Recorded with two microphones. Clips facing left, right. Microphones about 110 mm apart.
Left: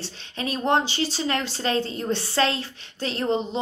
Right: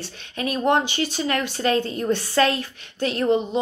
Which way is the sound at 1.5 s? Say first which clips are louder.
Right 3 dB; 30° left (ahead or behind).